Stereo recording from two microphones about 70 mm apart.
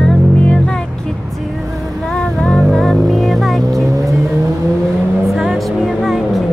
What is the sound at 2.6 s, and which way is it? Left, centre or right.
Vehicle, centre.